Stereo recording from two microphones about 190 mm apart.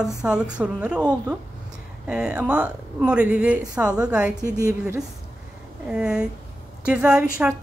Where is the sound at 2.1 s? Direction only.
5° right (ahead or behind).